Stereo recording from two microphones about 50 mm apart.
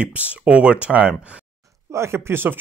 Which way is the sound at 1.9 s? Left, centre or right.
Right.